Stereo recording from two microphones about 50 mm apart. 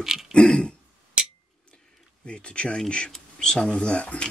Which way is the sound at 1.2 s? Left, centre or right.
Right.